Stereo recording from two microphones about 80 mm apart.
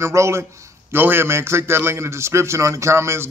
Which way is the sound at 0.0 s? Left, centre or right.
Right.